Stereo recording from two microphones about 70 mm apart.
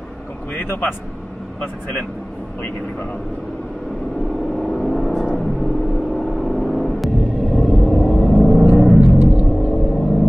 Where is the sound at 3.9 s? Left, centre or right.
Centre.